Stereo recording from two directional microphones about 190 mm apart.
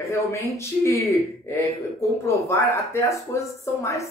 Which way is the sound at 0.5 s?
15° left (ahead or behind).